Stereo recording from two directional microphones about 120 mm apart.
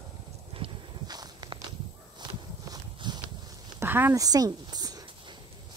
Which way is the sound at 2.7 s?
40° right (ahead or behind).